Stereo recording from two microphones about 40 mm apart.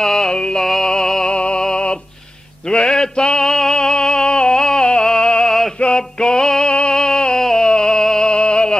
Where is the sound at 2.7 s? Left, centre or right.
Centre.